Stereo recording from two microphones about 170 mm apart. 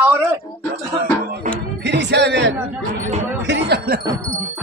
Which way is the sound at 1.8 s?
90° right.